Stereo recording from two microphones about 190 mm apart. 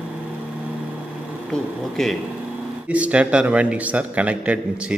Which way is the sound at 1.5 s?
Centre (ahead or behind).